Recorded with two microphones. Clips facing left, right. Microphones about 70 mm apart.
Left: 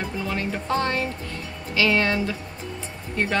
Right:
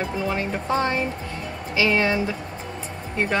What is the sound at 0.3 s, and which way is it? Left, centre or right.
Speech, centre.